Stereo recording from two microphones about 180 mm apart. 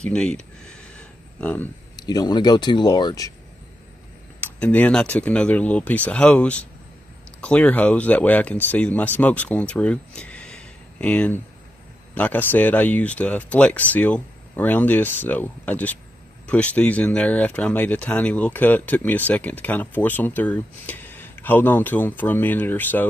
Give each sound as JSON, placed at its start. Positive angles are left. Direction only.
{"t": 0.0, "sound": "a sound", "side_deg": 5}
{"t": 2.0, "sound": "speech", "side_deg": 20}
{"t": 4.4, "sound": "speech", "side_deg": 10}